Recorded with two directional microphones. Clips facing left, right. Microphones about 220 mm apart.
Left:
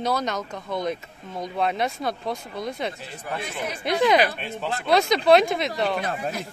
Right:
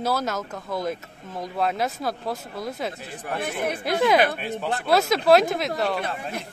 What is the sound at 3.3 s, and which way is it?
Speech, 55° right (ahead or behind).